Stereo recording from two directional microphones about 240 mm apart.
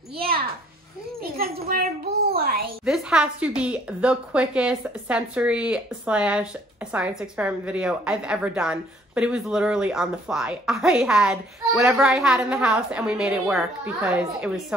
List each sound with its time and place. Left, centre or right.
1.2 s a child's voice: right
2.8 s a woman's voice: centre